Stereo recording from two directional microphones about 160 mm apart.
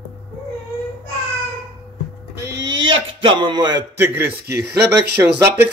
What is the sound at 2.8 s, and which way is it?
Speech, 30° right (ahead or behind).